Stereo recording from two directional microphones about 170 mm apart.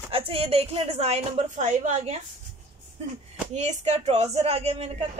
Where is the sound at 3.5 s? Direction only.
40° right (ahead or behind).